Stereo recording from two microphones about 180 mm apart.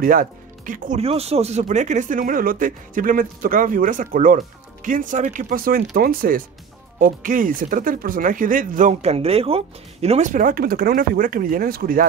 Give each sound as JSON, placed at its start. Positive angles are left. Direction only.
{"t": 0.0, "sound": "speech", "side_deg": -50}